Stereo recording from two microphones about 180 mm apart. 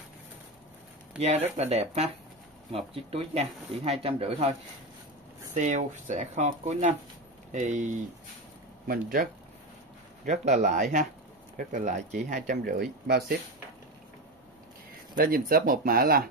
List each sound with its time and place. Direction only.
1.2 s speech: 35° right (ahead or behind)
8.8 s speech: 55° right (ahead or behind)
10.2 s speech: 40° right (ahead or behind)
13.0 s speech: 65° right (ahead or behind)
15.1 s speech: 50° right (ahead or behind)